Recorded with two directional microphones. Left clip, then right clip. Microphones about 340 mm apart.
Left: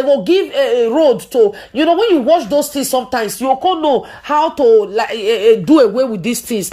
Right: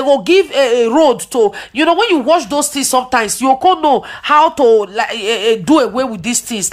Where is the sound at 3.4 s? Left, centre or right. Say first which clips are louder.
Right 3 dB; right.